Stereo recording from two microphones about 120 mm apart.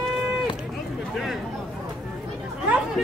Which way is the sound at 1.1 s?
Centre (ahead or behind).